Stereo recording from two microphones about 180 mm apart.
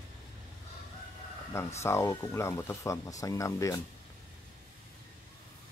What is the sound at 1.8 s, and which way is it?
Speech, 15° left (ahead or behind).